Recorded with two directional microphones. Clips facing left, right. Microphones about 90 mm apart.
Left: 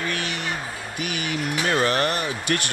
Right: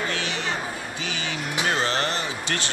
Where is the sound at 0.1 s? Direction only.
50° left (ahead or behind).